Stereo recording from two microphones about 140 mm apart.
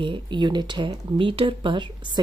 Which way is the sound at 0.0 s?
35° right (ahead or behind).